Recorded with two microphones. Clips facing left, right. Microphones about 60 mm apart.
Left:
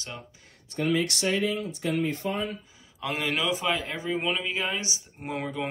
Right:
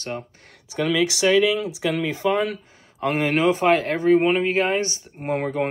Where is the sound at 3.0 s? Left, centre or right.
Right.